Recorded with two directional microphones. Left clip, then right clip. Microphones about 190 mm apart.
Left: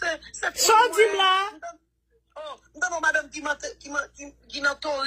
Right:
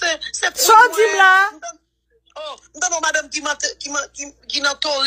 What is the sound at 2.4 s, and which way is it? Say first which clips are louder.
Speech: right 5 dB; 35° right (ahead or behind).